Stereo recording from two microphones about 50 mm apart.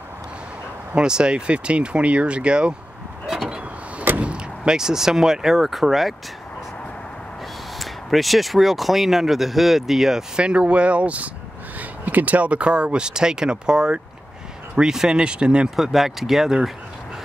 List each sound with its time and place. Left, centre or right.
0.9 s speech: centre
3.3 s vehicle: centre
4.2 s speech: centre
7.8 s speech: centre
15.7 s speech: centre